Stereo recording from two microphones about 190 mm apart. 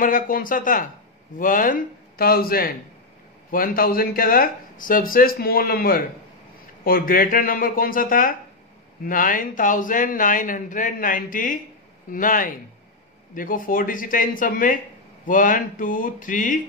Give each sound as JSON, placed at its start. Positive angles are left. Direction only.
{"t": 0.0, "sound": "speech", "side_deg": 45}